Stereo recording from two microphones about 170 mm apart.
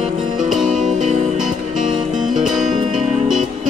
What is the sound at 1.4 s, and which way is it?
Music, 5° right (ahead or behind).